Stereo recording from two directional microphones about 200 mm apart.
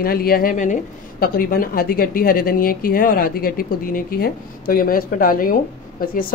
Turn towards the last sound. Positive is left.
turn(degrees=45)  # may be behind; listen again after turning